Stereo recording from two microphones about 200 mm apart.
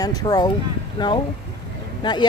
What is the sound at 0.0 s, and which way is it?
Speech, 20° left (ahead or behind).